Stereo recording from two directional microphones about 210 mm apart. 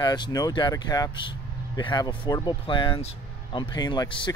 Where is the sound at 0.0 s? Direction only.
20° left (ahead or behind).